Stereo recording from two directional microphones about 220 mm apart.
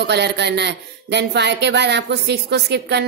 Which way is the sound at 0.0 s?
50° right (ahead or behind).